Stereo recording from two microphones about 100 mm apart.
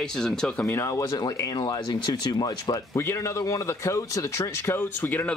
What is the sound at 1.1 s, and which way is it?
Speech, 40° left (ahead or behind).